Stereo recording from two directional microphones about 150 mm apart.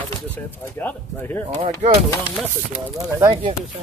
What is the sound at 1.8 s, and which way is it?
Speech, 50° right (ahead or behind).